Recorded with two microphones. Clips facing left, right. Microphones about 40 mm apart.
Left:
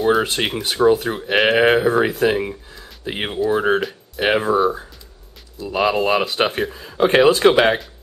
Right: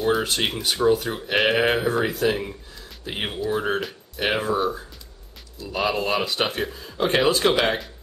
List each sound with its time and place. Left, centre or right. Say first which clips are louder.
0.2 s speech: left 3 dB; centre
2.7 s a sound: left 5 dB; centre
3.4 s speech: left 7 dB; centre